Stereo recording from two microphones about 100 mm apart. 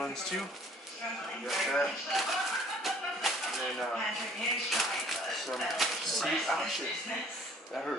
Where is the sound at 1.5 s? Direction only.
Centre (ahead or behind).